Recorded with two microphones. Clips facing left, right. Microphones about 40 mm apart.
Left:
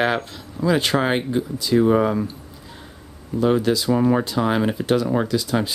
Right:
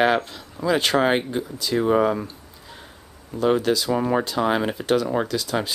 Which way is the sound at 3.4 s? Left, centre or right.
Centre.